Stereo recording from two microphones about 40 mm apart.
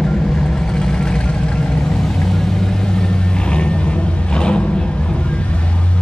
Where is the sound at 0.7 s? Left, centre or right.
Centre.